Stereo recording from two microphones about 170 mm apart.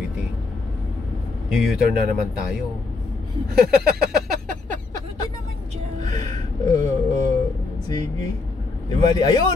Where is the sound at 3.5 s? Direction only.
65° right (ahead or behind).